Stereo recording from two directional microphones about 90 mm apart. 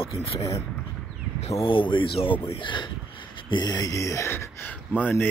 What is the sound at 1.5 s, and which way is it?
Speech, 70° left (ahead or behind).